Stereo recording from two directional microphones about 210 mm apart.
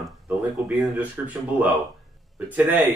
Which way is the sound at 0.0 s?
Centre (ahead or behind).